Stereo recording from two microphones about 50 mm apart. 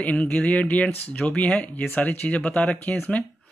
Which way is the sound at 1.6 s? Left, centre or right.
Left.